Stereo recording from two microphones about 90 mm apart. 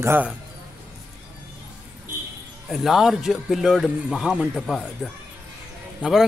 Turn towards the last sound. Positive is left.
turn(degrees=-10)  # may be behind; listen again after turning